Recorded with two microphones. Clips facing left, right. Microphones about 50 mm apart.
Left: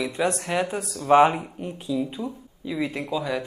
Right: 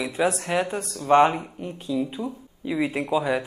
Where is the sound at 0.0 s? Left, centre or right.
Centre.